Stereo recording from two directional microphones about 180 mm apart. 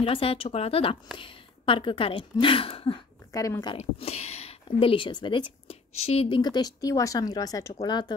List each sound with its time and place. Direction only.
0.0 s speech: 30° left (ahead or behind)
3.3 s speech: 20° left (ahead or behind)
3.7 s speech: 35° left (ahead or behind)